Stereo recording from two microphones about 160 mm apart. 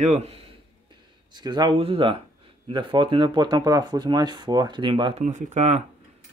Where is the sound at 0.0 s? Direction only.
40° right (ahead or behind).